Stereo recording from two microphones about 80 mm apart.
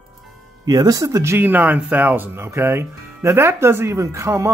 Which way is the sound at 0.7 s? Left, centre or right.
Right.